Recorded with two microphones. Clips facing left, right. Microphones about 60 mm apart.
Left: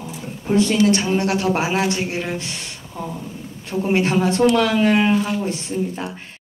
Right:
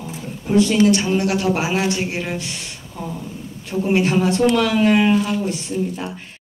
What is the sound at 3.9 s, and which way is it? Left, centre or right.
Speech, left.